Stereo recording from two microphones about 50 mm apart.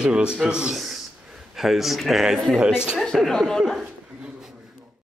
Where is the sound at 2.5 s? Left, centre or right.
Centre.